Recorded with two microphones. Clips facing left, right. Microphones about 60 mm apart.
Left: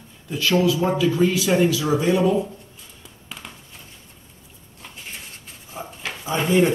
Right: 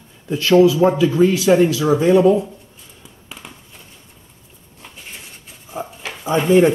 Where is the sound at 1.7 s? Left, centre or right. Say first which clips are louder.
Right 5 dB; right.